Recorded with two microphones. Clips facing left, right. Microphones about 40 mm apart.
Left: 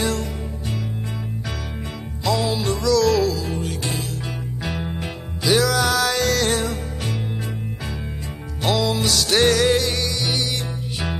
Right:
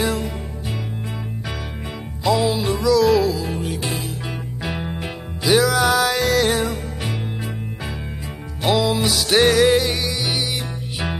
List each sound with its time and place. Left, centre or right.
0.0 s music: centre
2.2 s music: centre
8.6 s music: centre